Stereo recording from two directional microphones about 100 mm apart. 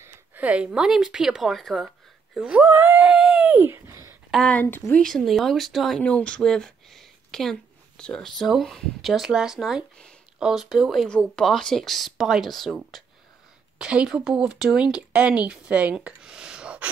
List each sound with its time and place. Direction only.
0.0 s speech: 15° right (ahead or behind); by 1.9 s centre (ahead or behind)
2.3 s a woman's voice: 10° right (ahead or behind)
2.7 s a sound: 20° right (ahead or behind)
4.5 s speech: 15° left (ahead or behind)
5.0 s speech: centre (ahead or behind)
11.1 s a woman's voice: 10° left (ahead or behind); by 16.9 s 10° right (ahead or behind)